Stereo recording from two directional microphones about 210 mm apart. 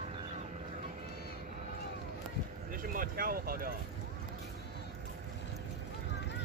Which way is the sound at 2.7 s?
40° right (ahead or behind).